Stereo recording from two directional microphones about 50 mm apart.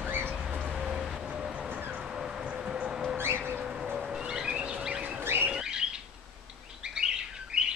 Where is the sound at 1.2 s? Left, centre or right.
Centre.